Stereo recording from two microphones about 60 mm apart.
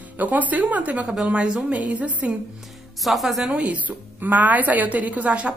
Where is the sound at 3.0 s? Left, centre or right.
Centre.